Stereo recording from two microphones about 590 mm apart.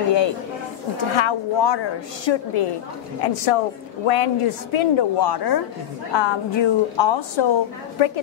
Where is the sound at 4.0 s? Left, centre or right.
Left.